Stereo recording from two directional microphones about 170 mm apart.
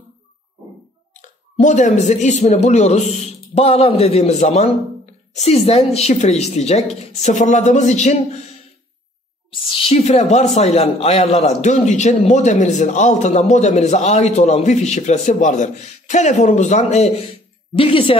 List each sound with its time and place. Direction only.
1.2 s speech: 45° left (ahead or behind)
9.5 s a man's voice: 30° left (ahead or behind)